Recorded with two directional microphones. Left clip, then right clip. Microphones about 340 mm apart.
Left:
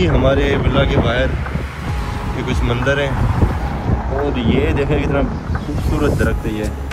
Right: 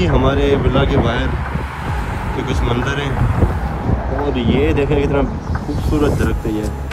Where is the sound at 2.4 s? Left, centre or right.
Centre.